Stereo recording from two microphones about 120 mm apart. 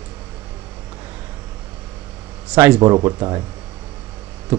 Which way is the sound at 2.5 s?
15° right (ahead or behind).